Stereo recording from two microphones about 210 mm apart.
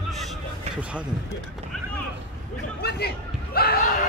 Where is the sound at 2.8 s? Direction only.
50° left (ahead or behind).